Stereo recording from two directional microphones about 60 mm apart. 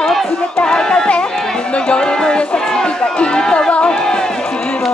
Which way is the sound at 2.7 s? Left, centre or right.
Centre.